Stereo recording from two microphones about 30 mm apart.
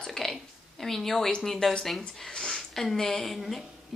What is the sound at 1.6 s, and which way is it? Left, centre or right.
Speech, left.